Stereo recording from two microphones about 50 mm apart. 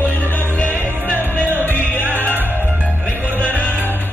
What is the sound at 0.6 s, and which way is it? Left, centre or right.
Music, left.